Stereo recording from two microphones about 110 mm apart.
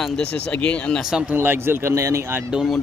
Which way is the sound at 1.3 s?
20° right (ahead or behind).